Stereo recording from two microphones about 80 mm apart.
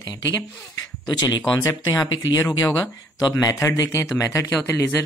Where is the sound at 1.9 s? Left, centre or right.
Left.